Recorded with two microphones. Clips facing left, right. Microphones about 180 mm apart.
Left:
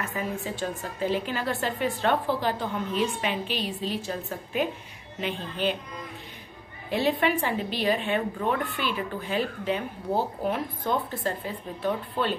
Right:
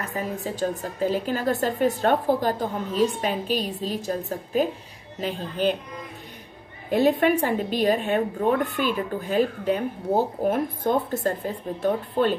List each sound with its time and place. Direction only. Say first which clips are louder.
0.0 s a woman's voice: right 2 dB; 40° right (ahead or behind)
6.9 s a woman's voice: right 5 dB; 45° right (ahead or behind)